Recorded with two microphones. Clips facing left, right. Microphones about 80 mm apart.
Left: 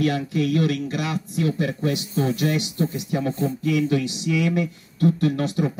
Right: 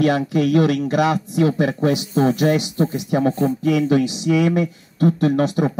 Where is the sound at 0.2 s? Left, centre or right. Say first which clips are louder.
Right 5 dB; right.